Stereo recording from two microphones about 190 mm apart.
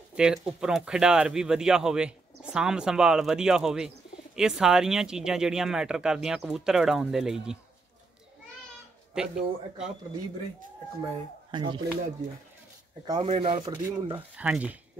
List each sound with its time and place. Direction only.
0.1 s speech: 5° right (ahead or behind)
9.1 s speech: 5° right (ahead or behind)
11.5 s speech: 25° right (ahead or behind)
13.0 s speech: 20° right (ahead or behind)
13.7 s speech: 15° right (ahead or behind)